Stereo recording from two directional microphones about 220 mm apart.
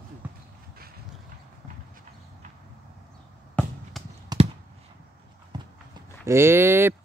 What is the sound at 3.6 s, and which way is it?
Basketball bounce, 5° left (ahead or behind).